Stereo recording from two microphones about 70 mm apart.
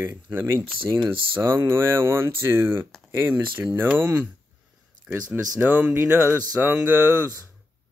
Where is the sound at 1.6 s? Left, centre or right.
Right.